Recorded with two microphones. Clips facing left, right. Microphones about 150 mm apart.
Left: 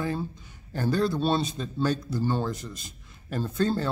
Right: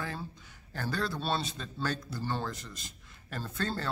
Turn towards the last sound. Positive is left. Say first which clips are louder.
# left 9 dB
turn(degrees=15)  # may be behind; listen again after turning